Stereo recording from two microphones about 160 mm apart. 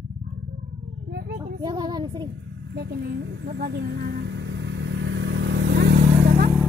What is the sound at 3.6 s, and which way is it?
Vehicle, 90° right.